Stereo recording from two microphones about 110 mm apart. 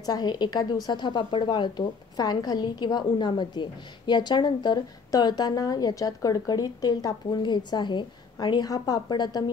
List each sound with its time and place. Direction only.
0.0 s a woman's voice: 40° left (ahead or behind)